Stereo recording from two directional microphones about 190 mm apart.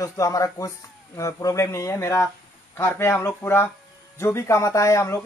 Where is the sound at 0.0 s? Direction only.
15° left (ahead or behind).